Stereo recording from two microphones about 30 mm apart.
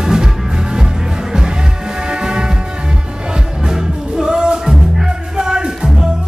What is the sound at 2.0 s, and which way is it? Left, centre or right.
Music, right.